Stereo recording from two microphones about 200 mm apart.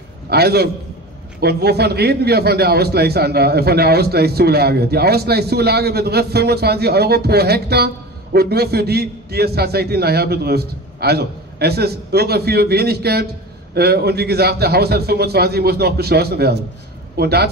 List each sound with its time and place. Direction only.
0.3 s a man's voice: 55° right (ahead or behind)